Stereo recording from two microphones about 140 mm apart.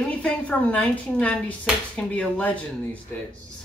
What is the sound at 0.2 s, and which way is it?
Speech, 10° left (ahead or behind).